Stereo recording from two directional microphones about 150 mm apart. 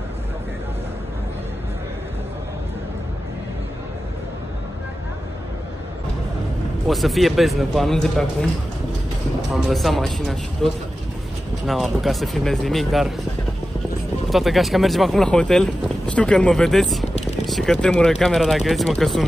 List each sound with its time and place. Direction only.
6.9 s speech: centre (ahead or behind)
9.5 s speech: centre (ahead or behind)
14.3 s speech: centre (ahead or behind)